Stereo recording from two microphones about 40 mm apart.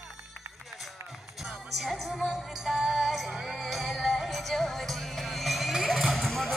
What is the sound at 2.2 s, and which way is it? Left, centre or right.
Music, centre.